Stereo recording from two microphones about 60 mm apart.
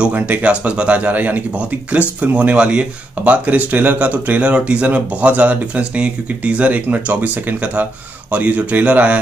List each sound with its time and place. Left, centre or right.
0.0 s speech: right